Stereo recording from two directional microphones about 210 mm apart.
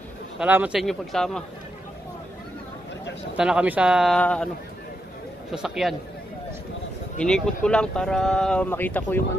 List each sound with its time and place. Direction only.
0.4 s speech: 5° right (ahead or behind)
3.3 s speech: 5° right (ahead or behind)
5.5 s speech: centre (ahead or behind)
7.2 s speech: 5° left (ahead or behind)